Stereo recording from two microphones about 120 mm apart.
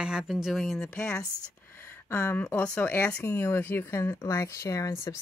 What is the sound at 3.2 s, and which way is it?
Speech, 20° left (ahead or behind).